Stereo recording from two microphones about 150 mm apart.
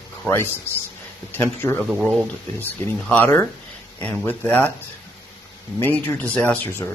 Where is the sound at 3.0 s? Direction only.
10° left (ahead or behind).